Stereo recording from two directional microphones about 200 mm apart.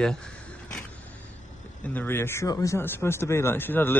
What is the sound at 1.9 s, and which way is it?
Speech, 10° left (ahead or behind).